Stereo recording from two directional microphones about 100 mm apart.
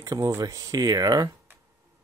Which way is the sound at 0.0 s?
35° right (ahead or behind).